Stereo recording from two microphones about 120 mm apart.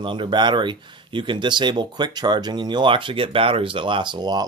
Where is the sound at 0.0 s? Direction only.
40° right (ahead or behind).